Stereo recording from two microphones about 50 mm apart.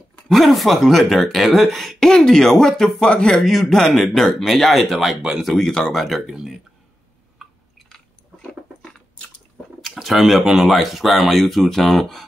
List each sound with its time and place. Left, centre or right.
0.3 s speech: centre
3.0 s speech: centre
3.3 s speech: centre
5.6 s speech: centre
7.9 s chewing: centre
9.8 s speech: centre